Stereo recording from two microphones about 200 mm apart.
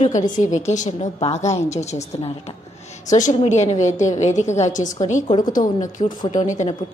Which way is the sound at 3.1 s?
35° left (ahead or behind).